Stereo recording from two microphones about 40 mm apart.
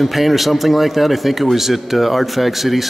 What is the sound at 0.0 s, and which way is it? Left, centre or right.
Speech, centre.